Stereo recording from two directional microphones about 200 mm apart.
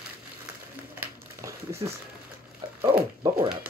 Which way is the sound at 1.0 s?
15° right (ahead or behind).